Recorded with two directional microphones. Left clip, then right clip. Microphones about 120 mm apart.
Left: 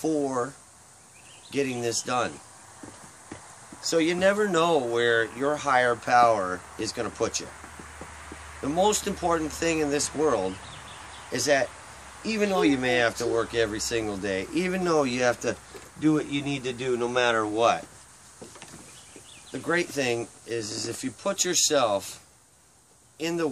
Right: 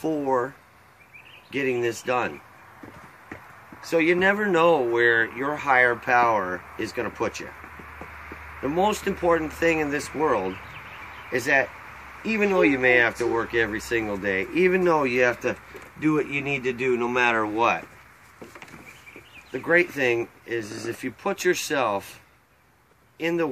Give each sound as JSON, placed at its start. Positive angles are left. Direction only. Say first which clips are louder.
{"t": 1.5, "sound": "speech", "louder": "right 3 dB", "side_deg": 45}
{"t": 3.8, "sound": "speech", "louder": "right 2 dB", "side_deg": 45}
{"t": 8.8, "sound": "speech", "louder": "right 3 dB", "side_deg": 50}
{"t": 16.0, "sound": "speech", "louder": "right 2 dB", "side_deg": 20}
{"t": 19.7, "sound": "speech", "louder": "right 5 dB", "side_deg": 45}
{"t": 23.1, "sound": "speech", "louder": "right 3 dB", "side_deg": 45}